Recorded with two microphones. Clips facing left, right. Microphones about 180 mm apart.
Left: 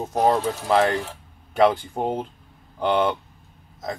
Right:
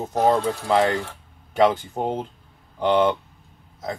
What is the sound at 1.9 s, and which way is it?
Speech, centre (ahead or behind).